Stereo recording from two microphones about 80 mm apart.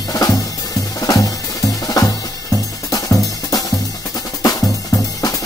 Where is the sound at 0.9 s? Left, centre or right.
Left.